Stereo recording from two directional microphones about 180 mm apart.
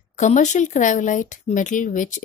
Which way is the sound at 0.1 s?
45° left (ahead or behind).